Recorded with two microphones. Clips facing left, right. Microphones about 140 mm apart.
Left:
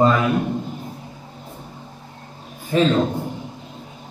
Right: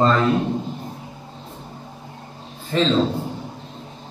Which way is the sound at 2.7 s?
10° left (ahead or behind).